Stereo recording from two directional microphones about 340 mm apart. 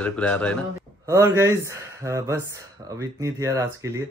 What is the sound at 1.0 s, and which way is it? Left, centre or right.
Speech, centre.